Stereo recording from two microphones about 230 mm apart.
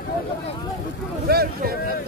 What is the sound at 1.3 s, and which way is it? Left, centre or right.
Speech, right.